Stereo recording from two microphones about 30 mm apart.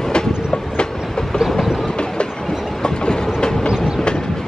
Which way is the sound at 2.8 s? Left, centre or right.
Left.